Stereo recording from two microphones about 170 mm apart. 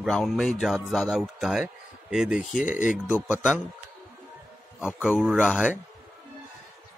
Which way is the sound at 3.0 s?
10° right (ahead or behind).